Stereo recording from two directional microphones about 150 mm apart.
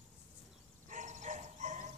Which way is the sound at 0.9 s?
55° right (ahead or behind).